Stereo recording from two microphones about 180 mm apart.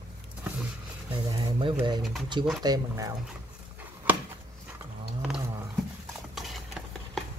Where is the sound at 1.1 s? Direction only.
25° right (ahead or behind).